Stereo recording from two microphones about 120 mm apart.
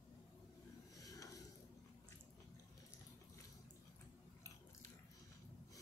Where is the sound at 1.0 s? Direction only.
30° left (ahead or behind).